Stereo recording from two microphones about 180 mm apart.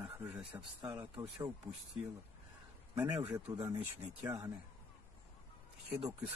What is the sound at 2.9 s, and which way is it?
Speech, 10° right (ahead or behind).